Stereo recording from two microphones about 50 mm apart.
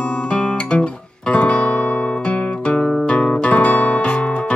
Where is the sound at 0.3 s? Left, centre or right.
Left.